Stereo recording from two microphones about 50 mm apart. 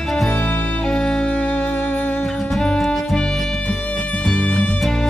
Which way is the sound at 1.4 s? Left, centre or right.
Left.